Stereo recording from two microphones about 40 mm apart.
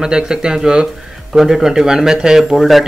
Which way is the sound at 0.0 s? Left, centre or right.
Centre.